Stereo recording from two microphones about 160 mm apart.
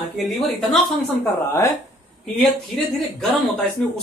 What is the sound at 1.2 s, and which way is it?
Speech, 15° left (ahead or behind).